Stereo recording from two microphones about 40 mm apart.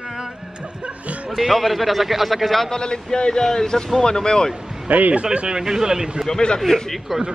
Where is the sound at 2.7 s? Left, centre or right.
Centre.